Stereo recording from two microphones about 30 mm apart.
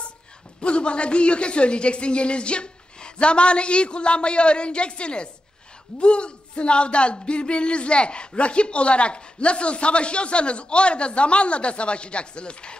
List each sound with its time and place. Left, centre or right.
0.6 s speech: left